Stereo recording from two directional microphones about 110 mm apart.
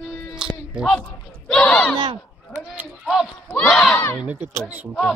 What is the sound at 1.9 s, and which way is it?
Speech, 40° right (ahead or behind).